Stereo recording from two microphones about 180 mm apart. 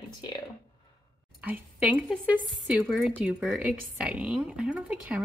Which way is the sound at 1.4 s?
10° right (ahead or behind).